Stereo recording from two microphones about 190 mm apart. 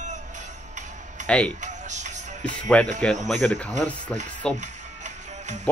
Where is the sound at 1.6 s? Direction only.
40° right (ahead or behind).